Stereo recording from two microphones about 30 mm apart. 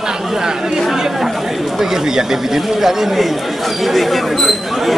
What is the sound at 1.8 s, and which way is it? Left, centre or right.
Speech, centre.